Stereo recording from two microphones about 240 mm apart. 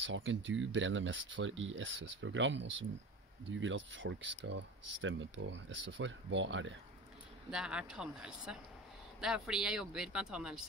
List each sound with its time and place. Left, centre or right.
0.0 s speech: right
7.5 s speech: centre